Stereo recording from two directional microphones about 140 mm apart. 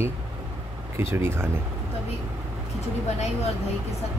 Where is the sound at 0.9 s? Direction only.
15° right (ahead or behind).